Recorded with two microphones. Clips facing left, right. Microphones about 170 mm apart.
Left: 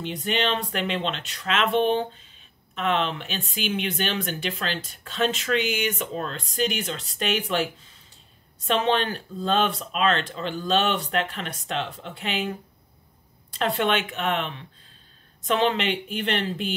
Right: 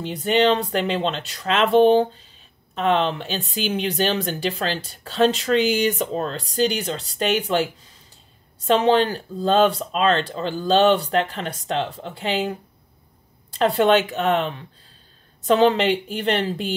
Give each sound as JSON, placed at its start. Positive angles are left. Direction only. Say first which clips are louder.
{"t": 0.0, "sound": "speech", "louder": "right 7 dB", "side_deg": -35}
{"t": 8.6, "sound": "speech", "louder": "right 6 dB", "side_deg": -35}